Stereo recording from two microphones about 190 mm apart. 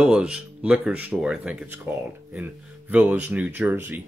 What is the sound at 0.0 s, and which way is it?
Speech, 5° right (ahead or behind).